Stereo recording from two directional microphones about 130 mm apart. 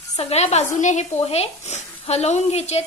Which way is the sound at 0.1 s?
55° left (ahead or behind).